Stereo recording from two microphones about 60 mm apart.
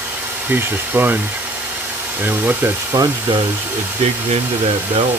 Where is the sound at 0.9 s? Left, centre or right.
Right.